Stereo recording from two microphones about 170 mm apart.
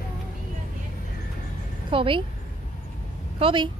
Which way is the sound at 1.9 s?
30° right (ahead or behind).